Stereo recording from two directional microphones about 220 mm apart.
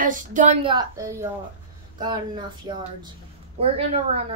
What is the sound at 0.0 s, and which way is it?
Speech, 35° right (ahead or behind).